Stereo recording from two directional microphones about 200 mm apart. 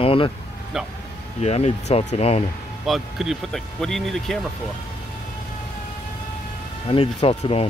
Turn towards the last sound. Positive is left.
turn(degrees=30)  # may be behind; listen again after turning